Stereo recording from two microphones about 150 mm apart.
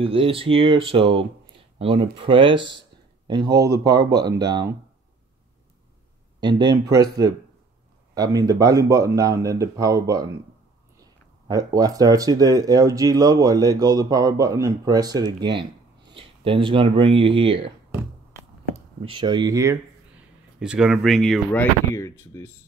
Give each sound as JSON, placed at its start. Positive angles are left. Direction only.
{"t": 0.0, "sound": "speech", "side_deg": -35}
{"t": 6.4, "sound": "speech", "side_deg": -30}
{"t": 11.4, "sound": "speech", "side_deg": -25}
{"t": 19.0, "sound": "speech", "side_deg": -30}
{"t": 20.5, "sound": "speech", "side_deg": -5}
{"t": 21.9, "sound": "speech", "side_deg": 20}